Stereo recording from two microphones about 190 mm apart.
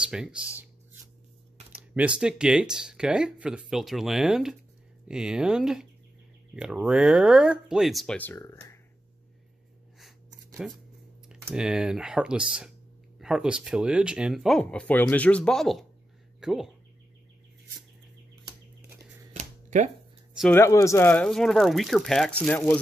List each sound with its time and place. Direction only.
0.1 s speech: 5° right (ahead or behind)
1.7 s speech: 5° right (ahead or behind); by 8.7 s 15° left (ahead or behind)
10.6 s speech: 5° right (ahead or behind)
19.3 s a sound: 40° right (ahead or behind)
20.5 s speech: 15° left (ahead or behind)